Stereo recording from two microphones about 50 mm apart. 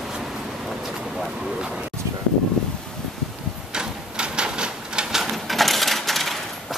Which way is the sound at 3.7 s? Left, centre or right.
Centre.